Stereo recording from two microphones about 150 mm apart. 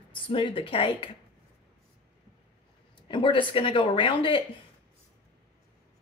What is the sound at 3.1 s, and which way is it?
Speech, 35° left (ahead or behind).